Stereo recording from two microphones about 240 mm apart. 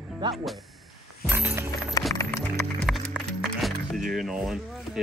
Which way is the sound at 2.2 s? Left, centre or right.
Centre.